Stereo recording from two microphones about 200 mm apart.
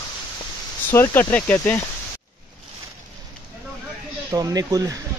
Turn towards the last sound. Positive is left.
turn(degrees=-20)  # may be behind; listen again after turning